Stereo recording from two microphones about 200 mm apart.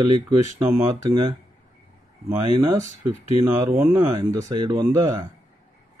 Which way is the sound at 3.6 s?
10° right (ahead or behind).